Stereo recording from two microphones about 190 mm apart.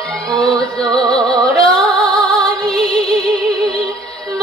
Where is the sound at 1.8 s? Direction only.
Centre (ahead or behind).